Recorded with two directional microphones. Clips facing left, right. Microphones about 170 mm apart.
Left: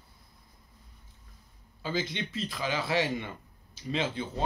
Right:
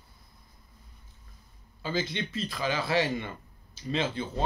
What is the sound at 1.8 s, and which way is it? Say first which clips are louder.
A man's voice: right 1 dB; 15° left (ahead or behind).